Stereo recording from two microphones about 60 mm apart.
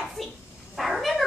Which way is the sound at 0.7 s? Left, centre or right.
Centre.